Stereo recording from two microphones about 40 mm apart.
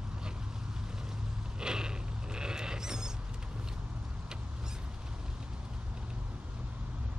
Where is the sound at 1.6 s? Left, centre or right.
Centre.